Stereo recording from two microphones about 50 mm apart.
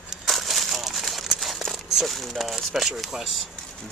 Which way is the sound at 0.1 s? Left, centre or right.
Centre.